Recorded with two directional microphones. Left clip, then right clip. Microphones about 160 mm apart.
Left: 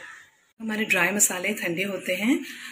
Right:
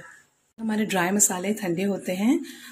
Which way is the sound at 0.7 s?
60° right (ahead or behind).